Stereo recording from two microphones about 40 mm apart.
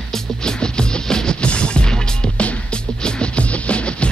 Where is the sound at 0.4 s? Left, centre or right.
Centre.